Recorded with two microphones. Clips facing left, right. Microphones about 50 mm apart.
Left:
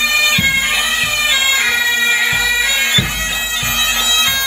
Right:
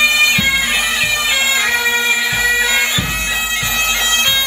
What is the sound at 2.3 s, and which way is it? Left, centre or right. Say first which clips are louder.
Bagpipes: right 1 dB; right.